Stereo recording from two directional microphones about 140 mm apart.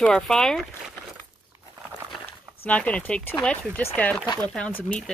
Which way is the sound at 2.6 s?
10° left (ahead or behind).